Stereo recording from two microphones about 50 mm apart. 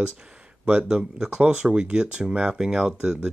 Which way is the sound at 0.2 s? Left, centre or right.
Right.